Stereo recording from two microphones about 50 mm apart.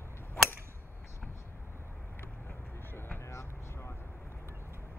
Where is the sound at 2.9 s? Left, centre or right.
Left.